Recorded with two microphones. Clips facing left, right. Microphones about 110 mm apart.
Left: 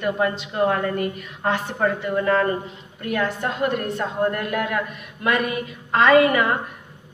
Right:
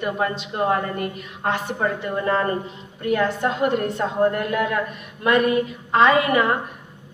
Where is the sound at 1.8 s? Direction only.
25° right (ahead or behind).